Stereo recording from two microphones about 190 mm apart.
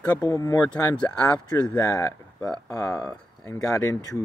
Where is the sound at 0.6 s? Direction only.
10° left (ahead or behind).